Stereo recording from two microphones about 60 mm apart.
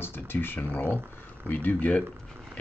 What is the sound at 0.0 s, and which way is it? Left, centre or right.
Speech, left.